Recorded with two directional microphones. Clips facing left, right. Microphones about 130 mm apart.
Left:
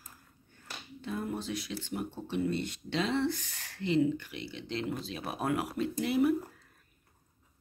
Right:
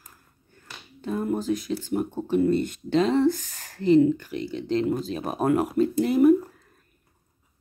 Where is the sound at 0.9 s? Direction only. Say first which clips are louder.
Right 9 dB; 45° right (ahead or behind).